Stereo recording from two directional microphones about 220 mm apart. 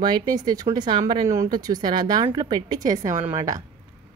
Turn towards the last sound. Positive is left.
turn(degrees=-15)  # may be behind; listen again after turning